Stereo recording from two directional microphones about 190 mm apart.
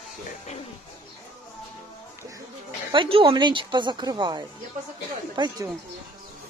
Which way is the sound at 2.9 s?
25° right (ahead or behind).